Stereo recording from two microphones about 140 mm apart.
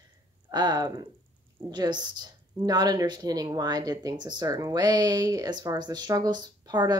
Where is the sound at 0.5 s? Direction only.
30° right (ahead or behind).